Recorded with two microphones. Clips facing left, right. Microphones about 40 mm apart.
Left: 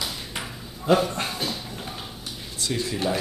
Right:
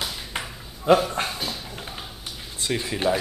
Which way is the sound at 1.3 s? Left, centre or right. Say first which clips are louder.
Left 1 dB; centre.